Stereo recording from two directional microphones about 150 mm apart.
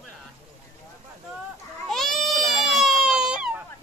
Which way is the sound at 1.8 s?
Centre (ahead or behind).